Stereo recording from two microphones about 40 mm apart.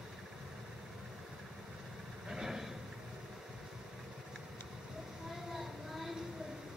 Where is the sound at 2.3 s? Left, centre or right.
Centre.